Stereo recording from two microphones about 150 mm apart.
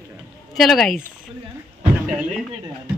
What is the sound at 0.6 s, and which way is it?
Speech, centre (ahead or behind).